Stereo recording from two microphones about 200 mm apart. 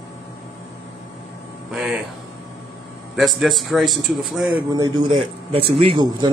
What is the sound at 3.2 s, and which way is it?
A man's voice, centre (ahead or behind).